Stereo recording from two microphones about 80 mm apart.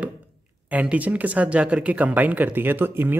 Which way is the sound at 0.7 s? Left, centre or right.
Centre.